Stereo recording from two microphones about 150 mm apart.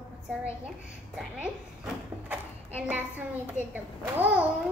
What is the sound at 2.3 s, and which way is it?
A child's voice, 10° right (ahead or behind).